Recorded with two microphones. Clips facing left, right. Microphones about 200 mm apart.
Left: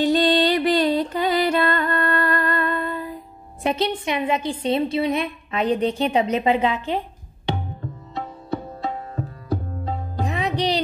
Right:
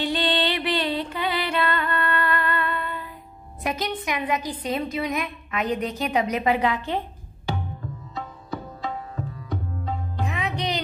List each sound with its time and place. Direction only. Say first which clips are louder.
0.0 s music: left 7 dB; 40° left (ahead or behind)
3.6 s a woman's voice: left 5 dB; 30° left (ahead or behind)
8.1 s tabla: left 6 dB; 30° left (ahead or behind)
10.1 s music: left 6 dB; 35° left (ahead or behind)